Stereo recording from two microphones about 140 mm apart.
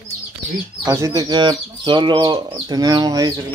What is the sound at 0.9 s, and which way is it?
Speech, 25° right (ahead or behind).